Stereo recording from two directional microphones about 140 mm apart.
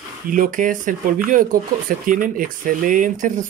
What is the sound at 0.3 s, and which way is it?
Speech, 75° right (ahead or behind).